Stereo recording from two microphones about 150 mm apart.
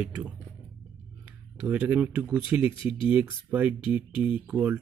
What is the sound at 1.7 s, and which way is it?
Speech, 10° right (ahead or behind).